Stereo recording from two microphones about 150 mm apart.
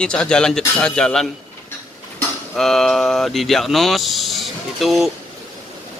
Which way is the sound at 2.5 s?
5° left (ahead or behind).